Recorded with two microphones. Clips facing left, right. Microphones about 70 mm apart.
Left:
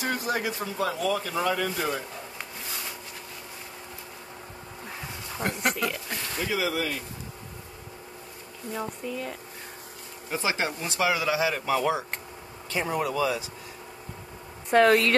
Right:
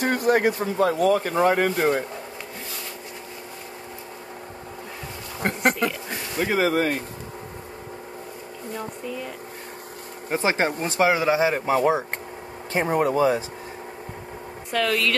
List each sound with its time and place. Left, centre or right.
0.0 s speech: right
5.4 s speech: right
10.3 s speech: right
14.7 s speech: left